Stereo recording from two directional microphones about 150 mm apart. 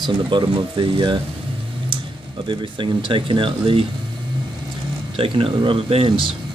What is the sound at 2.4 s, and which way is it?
Speech, 30° right (ahead or behind).